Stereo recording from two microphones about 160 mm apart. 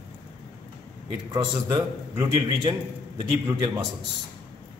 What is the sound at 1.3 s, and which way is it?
A man's voice, 25° right (ahead or behind).